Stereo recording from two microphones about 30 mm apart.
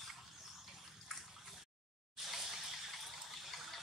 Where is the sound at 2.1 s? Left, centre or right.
Centre.